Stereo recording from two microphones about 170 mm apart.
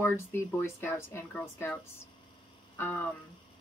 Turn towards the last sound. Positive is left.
turn(degrees=10)  # may be behind; listen again after turning